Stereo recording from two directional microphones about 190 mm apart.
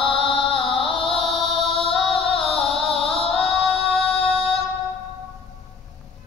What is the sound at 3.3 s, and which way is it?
Female singing, 30° left (ahead or behind).